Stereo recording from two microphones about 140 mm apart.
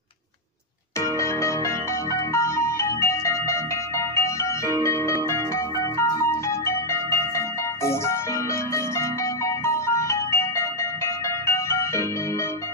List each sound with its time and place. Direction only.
0.9 s music: 20° left (ahead or behind)